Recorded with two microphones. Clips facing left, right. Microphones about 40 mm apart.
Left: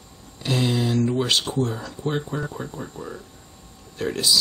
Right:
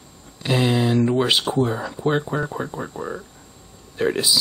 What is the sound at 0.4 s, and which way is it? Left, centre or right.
Speech, centre.